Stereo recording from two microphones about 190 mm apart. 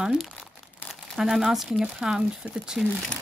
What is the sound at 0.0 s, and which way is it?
Speech, 5° right (ahead or behind).